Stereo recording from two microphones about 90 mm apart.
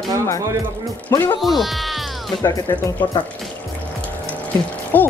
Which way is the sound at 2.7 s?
30° left (ahead or behind).